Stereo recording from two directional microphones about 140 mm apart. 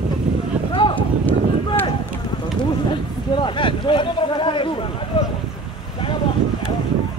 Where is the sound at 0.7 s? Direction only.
35° left (ahead or behind).